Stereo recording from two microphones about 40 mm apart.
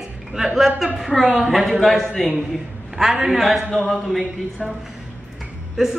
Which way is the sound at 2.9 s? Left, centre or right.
Centre.